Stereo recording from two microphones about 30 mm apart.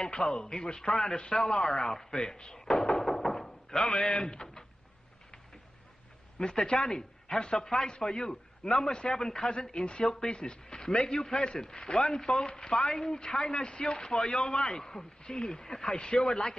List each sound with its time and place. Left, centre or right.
0.2 s a man's voice: left
3.0 s a sound: centre
3.7 s a man's voice: left
6.4 s a man's voice: centre
10.0 s a man's voice: left